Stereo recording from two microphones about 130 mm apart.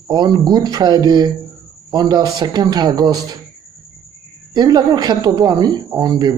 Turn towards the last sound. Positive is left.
turn(degrees=-30)  # may be behind; listen again after turning